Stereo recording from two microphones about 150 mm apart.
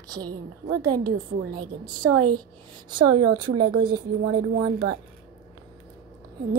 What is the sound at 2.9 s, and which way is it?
A woman's voice, 30° right (ahead or behind).